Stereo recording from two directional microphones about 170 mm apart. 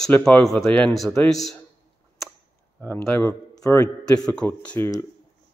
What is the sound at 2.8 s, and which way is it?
A man's voice, 10° left (ahead or behind).